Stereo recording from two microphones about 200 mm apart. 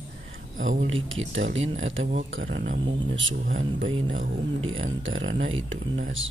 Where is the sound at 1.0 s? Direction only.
75° right (ahead or behind).